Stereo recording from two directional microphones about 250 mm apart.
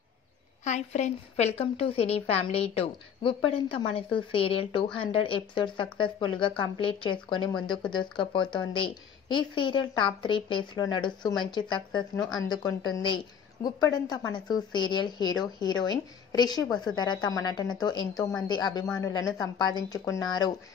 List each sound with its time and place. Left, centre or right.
0.7 s a woman's voice: left